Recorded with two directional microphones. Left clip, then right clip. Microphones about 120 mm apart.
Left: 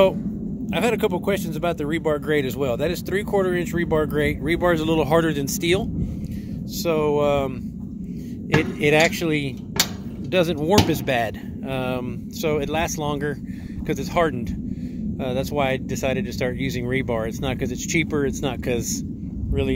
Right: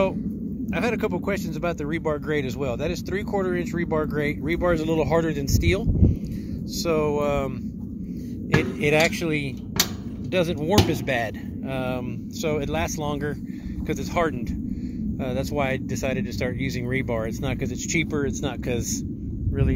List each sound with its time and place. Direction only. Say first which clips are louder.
0.7 s speech: left 4 dB; 45° left (ahead or behind)
6.8 s speech: left 3 dB; 40° left (ahead or behind)
8.8 s speech: left 3 dB; 55° left (ahead or behind); by 11.2 s 75° left (ahead or behind)
11.7 s speech: left 3 dB; 60° left (ahead or behind)